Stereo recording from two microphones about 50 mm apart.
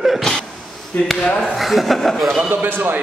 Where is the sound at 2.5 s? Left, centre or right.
Right.